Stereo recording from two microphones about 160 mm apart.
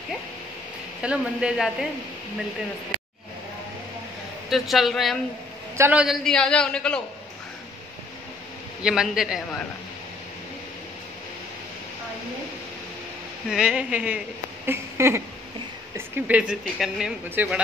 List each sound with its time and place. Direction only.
1.0 s speech: 5° right (ahead or behind)
4.5 s speech: centre (ahead or behind)
8.8 s speech: 5° right (ahead or behind)
13.5 s speech: 5° right (ahead or behind)